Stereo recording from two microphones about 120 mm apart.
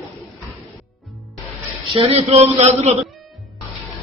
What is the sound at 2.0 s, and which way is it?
Speech, 60° right (ahead or behind).